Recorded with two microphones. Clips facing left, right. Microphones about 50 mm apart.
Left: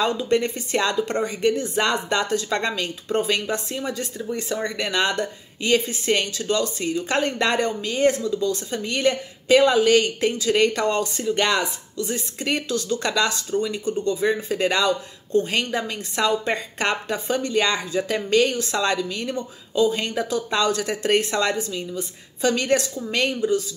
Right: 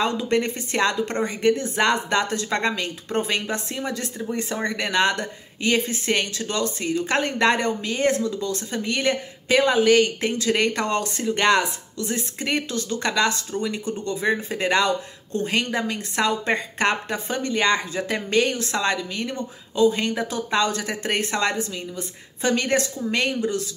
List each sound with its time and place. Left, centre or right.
0.0 s speech: right
9.5 s speech: right
10.3 s speech: right